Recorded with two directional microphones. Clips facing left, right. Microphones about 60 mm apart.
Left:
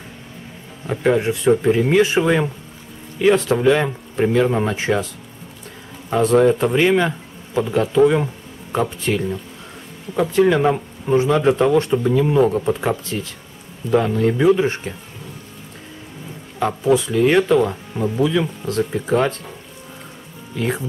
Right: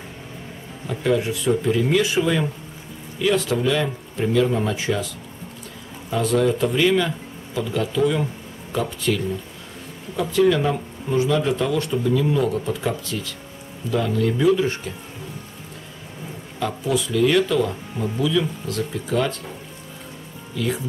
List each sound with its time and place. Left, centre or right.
0.8 s speech: left
10.3 s speech: left
16.5 s speech: left
18.2 s speech: left
20.5 s speech: left